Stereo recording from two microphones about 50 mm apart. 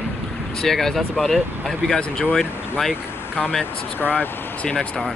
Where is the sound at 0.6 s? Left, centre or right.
Centre.